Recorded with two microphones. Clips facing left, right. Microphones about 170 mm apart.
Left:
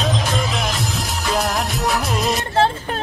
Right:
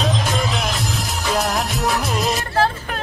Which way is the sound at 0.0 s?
Centre (ahead or behind).